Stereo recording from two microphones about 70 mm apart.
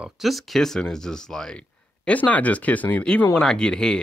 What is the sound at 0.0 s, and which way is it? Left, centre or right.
Speech, centre.